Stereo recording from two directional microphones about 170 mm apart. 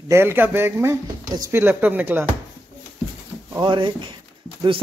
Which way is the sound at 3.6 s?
30° right (ahead or behind).